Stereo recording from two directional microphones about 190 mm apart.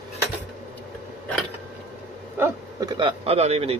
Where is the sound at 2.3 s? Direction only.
15° right (ahead or behind); by 3.7 s 35° right (ahead or behind).